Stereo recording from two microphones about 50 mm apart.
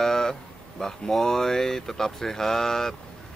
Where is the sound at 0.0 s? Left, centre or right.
Centre.